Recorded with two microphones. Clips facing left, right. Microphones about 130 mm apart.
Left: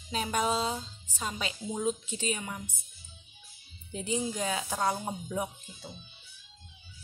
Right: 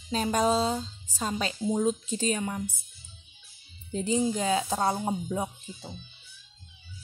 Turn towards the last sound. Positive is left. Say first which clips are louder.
# right 2 dB
turn(degrees=-30)  # may be behind; listen again after turning